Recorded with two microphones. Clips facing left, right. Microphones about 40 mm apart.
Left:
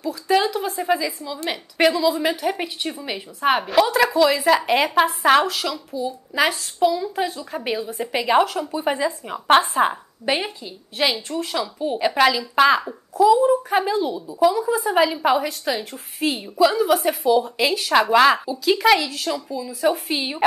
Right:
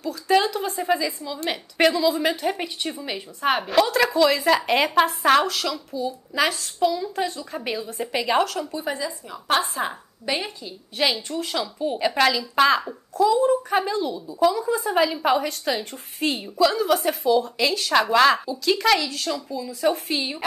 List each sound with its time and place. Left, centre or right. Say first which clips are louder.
0.0 s a woman's voice: left 1 dB; centre
8.8 s a woman's voice: left 6 dB; left
10.6 s a woman's voice: left 1 dB; centre
20.2 s a woman's voice: left 3 dB; centre